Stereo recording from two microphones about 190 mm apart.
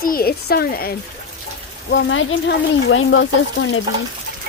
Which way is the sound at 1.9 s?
75° left (ahead or behind).